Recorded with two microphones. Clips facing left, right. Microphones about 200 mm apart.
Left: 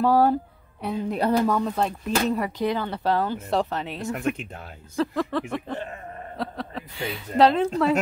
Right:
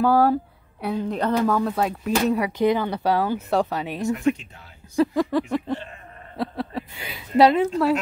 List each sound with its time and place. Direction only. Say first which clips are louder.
0.0 s speech: right 1 dB; centre (ahead or behind)
1.2 s speech: even; 10° left (ahead or behind)
1.6 s a woman's voice: right 2 dB; 5° right (ahead or behind)
4.1 s speech: right 5 dB; 60° left (ahead or behind)
4.9 s a woman's voice: right 5 dB; 10° right (ahead or behind)